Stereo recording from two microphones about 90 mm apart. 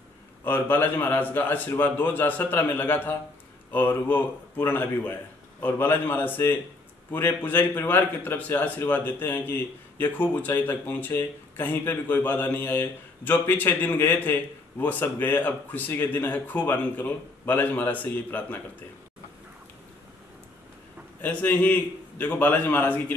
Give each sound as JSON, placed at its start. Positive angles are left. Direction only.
{"t": 0.4, "sound": "a man's voice", "side_deg": 20}
{"t": 21.2, "sound": "speech", "side_deg": 20}